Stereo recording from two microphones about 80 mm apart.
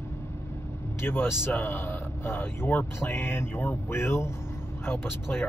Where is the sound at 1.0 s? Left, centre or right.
Left.